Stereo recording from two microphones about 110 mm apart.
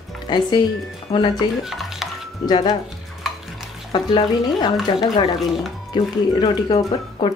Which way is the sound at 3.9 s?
45° left (ahead or behind).